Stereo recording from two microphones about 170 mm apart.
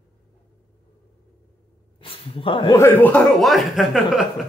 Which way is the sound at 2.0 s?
30° left (ahead or behind).